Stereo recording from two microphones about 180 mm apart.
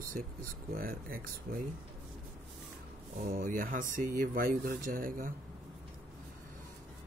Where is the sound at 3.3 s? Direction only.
50° right (ahead or behind).